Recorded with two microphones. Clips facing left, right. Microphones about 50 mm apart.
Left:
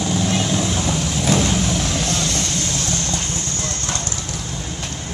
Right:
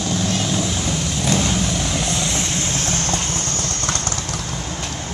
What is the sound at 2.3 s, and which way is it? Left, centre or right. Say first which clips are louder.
Vehicle: even; right.